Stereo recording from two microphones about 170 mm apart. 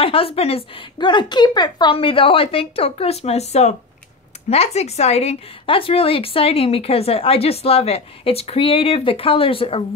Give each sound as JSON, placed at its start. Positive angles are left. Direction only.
{"t": 0.0, "sound": "a woman's voice", "side_deg": 35}